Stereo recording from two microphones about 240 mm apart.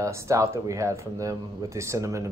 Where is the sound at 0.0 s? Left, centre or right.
Centre.